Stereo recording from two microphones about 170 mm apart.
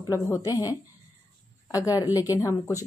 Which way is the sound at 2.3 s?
20° left (ahead or behind).